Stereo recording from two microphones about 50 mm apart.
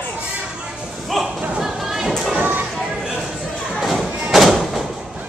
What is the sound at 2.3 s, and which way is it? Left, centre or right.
Music, right.